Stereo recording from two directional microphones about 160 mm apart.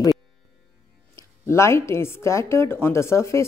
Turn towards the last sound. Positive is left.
turn(degrees=20)  # may be behind; listen again after turning